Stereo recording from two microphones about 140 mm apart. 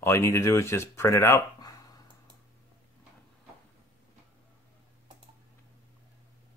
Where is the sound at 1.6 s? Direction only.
25° left (ahead or behind).